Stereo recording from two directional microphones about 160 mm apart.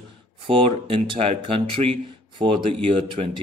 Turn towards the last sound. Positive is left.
turn(degrees=-30)  # may be behind; listen again after turning